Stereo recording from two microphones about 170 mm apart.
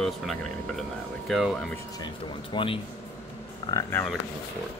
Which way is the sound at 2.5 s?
30° left (ahead or behind).